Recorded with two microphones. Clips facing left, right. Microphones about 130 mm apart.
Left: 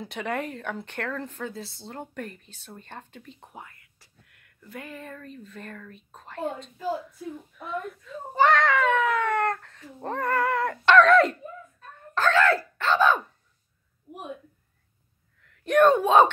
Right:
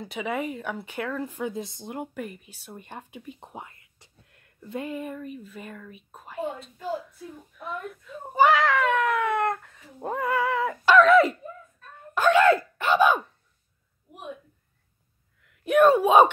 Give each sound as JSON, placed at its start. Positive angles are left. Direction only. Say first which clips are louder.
{"t": 0.0, "sound": "speech", "louder": "right 1 dB", "side_deg": 0}
{"t": 3.3, "sound": "speech", "louder": "right 3 dB", "side_deg": -20}
{"t": 12.1, "sound": "speech", "louder": "right 3 dB", "side_deg": -15}
{"t": 15.4, "sound": "speech", "louder": "right 1 dB", "side_deg": -5}